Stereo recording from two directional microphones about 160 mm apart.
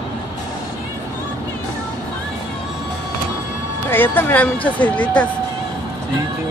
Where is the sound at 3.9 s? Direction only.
10° left (ahead or behind).